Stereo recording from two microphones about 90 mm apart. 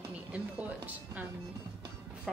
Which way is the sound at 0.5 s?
20° right (ahead or behind).